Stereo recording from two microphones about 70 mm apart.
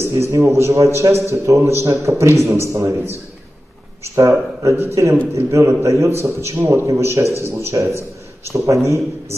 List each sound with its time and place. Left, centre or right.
0.5 s a man's voice: right